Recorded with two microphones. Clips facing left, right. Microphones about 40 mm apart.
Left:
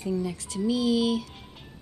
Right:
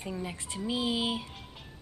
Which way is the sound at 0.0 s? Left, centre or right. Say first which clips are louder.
Left 7 dB; right.